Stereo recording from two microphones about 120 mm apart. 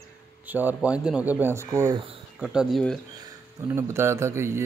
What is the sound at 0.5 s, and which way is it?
Speech, 15° right (ahead or behind).